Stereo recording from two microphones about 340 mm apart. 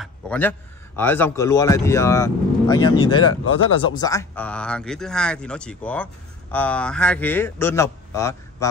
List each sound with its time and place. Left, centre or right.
0.0 s speech: centre
3.2 s speech: left
3.8 s speech: centre